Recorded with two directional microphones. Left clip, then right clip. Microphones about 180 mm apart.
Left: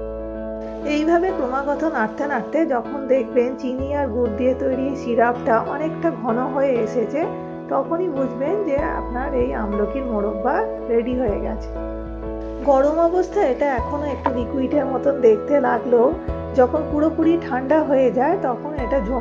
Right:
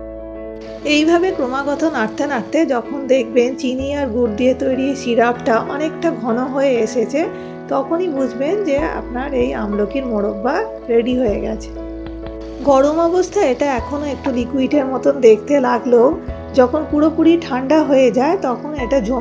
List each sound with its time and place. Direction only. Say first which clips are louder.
0.8 s a woman's voice: right 5 dB; 30° right (ahead or behind)
12.6 s speech: right 3 dB; 25° right (ahead or behind)